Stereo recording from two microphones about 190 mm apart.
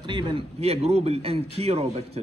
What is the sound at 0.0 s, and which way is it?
Speech, 25° right (ahead or behind).